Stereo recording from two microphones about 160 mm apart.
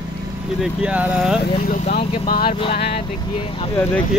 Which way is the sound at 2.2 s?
65° left (ahead or behind).